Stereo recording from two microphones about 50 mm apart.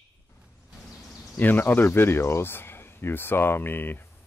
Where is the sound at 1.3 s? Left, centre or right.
Left.